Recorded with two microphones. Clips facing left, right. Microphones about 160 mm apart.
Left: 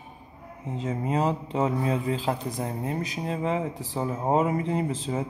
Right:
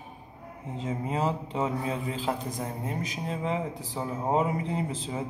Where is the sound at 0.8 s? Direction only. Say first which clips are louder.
Left 3 dB; 40° left (ahead or behind).